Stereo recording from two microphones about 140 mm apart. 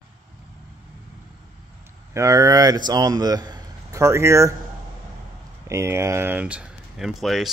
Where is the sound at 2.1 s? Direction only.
25° right (ahead or behind).